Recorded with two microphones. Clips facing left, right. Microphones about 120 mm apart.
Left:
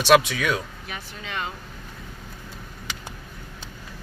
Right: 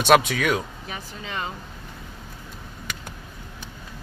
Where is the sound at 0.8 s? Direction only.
30° right (ahead or behind).